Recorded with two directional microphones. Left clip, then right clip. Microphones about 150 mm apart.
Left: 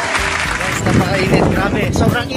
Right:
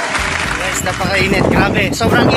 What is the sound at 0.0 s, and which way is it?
Speech, centre (ahead or behind).